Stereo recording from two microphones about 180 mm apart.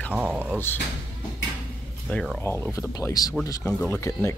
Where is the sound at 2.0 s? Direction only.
5° left (ahead or behind).